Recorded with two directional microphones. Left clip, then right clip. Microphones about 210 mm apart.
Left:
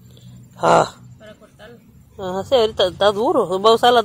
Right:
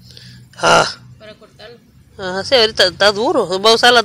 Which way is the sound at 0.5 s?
20° right (ahead or behind).